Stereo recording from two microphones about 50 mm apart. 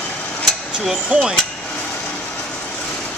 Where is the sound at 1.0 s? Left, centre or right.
Right.